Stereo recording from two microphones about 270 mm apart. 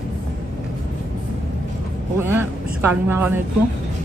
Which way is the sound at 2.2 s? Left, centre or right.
Centre.